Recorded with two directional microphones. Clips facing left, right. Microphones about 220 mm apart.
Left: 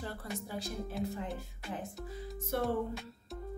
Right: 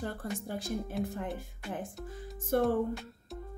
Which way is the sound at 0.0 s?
50° right (ahead or behind).